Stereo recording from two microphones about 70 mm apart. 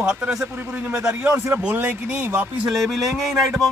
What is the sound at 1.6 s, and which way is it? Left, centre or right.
Speech, centre.